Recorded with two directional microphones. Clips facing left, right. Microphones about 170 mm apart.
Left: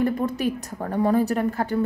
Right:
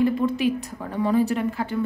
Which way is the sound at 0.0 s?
45° left (ahead or behind).